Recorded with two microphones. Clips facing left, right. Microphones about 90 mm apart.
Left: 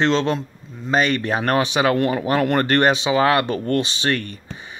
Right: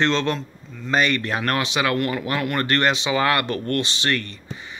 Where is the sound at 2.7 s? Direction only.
20° left (ahead or behind).